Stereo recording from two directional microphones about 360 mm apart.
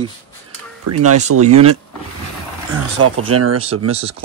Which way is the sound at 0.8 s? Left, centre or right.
Right.